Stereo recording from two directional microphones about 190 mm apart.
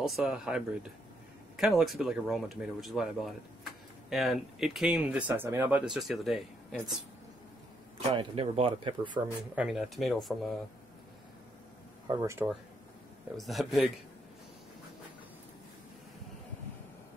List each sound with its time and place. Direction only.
0.0 s speech: 5° right (ahead or behind)
8.1 s speech: 30° right (ahead or behind)
9.6 s speech: centre (ahead or behind)
12.1 s speech: 15° right (ahead or behind)
13.4 s speech: centre (ahead or behind)